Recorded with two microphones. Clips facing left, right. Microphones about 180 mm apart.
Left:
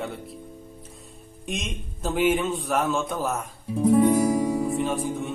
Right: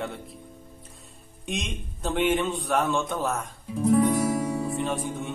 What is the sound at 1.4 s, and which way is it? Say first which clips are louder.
Speech: even; centre (ahead or behind).